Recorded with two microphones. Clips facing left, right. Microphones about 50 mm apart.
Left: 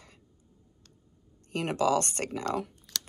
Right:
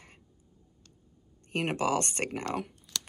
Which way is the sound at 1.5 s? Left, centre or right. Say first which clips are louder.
Left 2 dB; right.